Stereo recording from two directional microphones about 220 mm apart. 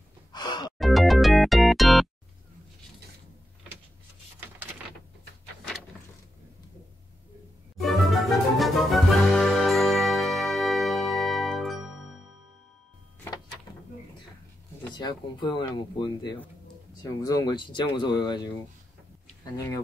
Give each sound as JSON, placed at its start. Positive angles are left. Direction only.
{"t": 0.3, "sound": "music", "side_deg": 20}
{"t": 0.7, "sound": "music", "side_deg": 0}
{"t": 7.7, "sound": "music", "side_deg": 0}
{"t": 15.0, "sound": "speech", "side_deg": 20}
{"t": 19.5, "sound": "speech", "side_deg": 15}